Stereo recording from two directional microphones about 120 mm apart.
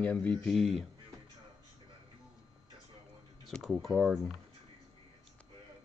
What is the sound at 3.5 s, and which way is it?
Speech, centre (ahead or behind).